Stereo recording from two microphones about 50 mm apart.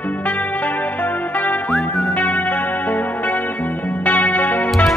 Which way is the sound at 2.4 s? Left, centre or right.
Left.